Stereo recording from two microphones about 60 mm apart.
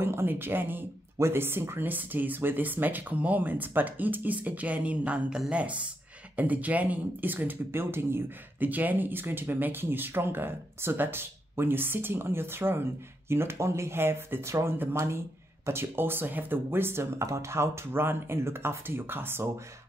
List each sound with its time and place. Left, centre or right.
0.0 s speech: right